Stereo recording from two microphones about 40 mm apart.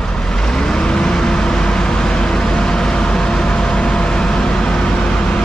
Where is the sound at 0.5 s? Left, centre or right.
Centre.